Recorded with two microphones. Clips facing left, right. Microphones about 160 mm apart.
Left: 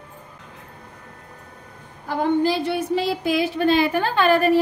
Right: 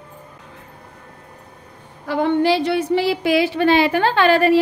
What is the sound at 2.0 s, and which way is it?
A woman's voice, 80° right.